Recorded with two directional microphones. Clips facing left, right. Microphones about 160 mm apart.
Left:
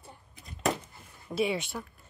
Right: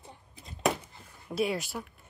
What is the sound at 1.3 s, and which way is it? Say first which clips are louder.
Speech: left 1 dB; centre (ahead or behind).